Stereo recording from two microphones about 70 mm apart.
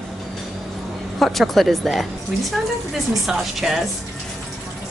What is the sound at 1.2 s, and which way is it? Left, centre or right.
Speech, centre.